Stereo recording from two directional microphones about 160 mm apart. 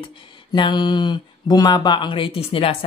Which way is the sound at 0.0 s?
30° left (ahead or behind).